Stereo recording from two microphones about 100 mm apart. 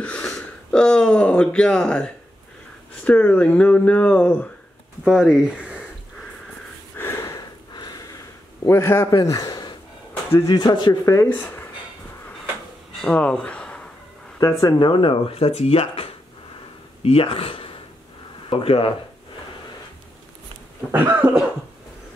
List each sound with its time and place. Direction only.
0.0 s speech: 10° left (ahead or behind)
5.0 s speech: 5° right (ahead or behind)
7.0 s a sound: 25° left (ahead or behind)
7.7 s a sound: 40° left (ahead or behind)
8.6 s a man's voice: 25° left (ahead or behind); by 11.1 s 45° left (ahead or behind)
11.2 s speech: 20° left (ahead or behind)
13.0 s speech: 10° left (ahead or behind)
14.4 s speech: 40° left (ahead or behind); by 18.9 s 70° left (ahead or behind)
20.9 s cough: 20° right (ahead or behind)